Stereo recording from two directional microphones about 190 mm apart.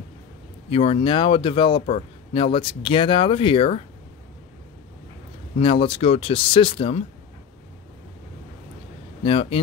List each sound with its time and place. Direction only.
0.7 s a man's voice: 30° left (ahead or behind)
5.6 s a man's voice: 30° left (ahead or behind)
9.2 s speech: 30° left (ahead or behind)